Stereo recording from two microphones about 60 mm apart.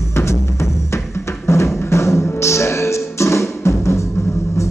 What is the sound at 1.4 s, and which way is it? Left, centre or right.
Music, left.